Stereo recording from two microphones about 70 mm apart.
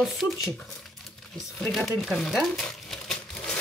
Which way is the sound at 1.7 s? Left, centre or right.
Centre.